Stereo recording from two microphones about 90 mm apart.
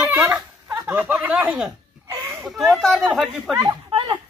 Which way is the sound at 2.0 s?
45° right (ahead or behind).